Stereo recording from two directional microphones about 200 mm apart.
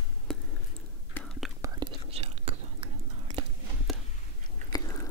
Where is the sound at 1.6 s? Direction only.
15° right (ahead or behind).